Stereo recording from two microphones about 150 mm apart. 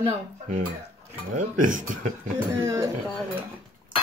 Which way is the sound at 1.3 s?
60° right (ahead or behind).